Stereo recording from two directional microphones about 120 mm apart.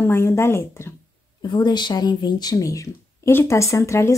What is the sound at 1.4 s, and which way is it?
Speech, 35° left (ahead or behind).